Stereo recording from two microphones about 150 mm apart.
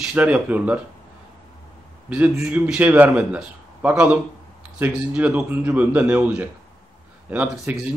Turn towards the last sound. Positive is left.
turn(degrees=-10)  # may be behind; listen again after turning